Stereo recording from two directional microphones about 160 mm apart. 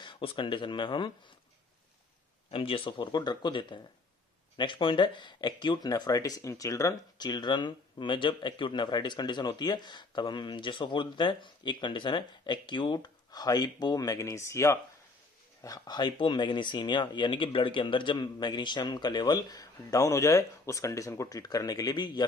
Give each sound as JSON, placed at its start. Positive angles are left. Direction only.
{"t": 0.0, "sound": "speech", "side_deg": 35}
{"t": 2.5, "sound": "speech", "side_deg": 35}